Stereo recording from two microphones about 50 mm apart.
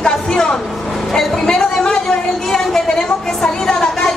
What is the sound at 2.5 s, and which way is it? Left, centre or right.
A woman's voice, centre.